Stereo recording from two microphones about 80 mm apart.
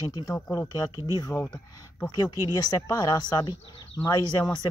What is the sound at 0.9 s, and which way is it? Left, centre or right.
Speech, left.